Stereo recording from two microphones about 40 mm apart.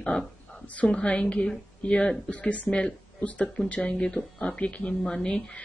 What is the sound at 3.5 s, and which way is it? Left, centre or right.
Speech, left.